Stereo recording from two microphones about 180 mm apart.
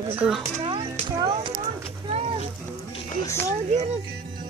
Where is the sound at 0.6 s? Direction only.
30° right (ahead or behind).